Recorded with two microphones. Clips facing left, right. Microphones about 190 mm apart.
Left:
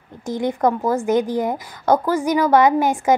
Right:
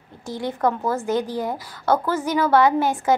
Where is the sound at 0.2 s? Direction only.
15° left (ahead or behind).